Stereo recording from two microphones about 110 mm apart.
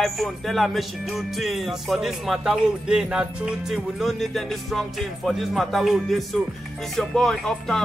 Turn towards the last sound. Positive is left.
turn(degrees=5)  # may be behind; listen again after turning